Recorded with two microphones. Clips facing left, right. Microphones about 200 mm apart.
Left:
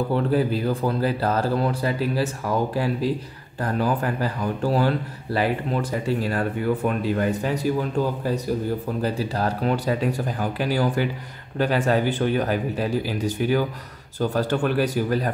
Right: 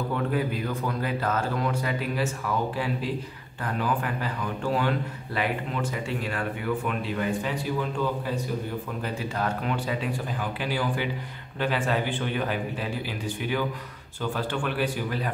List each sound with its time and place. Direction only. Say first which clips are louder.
0.1 s speech: left 6 dB; 35° left (ahead or behind)
9.0 s speech: left 4 dB; 35° left (ahead or behind)